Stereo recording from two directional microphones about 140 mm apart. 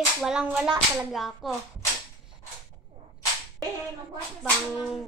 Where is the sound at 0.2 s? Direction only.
5° right (ahead or behind).